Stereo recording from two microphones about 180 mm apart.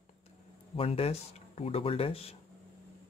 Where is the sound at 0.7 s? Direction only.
30° left (ahead or behind).